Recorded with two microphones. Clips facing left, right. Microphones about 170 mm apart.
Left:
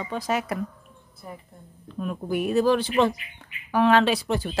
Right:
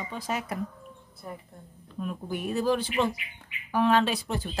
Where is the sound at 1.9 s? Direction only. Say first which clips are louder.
Left 6 dB; 80° left.